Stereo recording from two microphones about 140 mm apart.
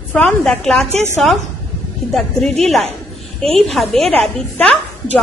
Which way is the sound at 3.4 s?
Centre (ahead or behind).